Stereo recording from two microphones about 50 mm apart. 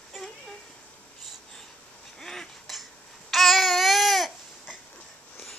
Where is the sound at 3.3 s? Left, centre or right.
Centre.